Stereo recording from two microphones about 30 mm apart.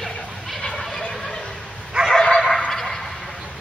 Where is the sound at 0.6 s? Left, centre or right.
Centre.